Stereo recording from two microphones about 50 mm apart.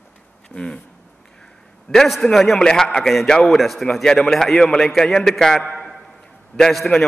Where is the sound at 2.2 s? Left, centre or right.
Centre.